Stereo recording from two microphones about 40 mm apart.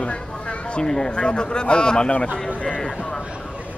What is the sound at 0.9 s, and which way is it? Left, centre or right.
Speech, centre.